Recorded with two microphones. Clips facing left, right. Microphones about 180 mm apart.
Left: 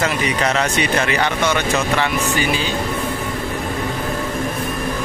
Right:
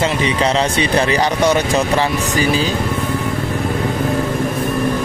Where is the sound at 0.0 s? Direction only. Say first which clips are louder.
Right 3 dB; 25° right (ahead or behind).